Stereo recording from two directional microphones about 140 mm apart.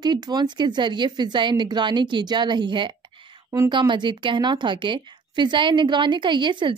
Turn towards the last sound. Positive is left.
turn(degrees=-35)  # may be behind; listen again after turning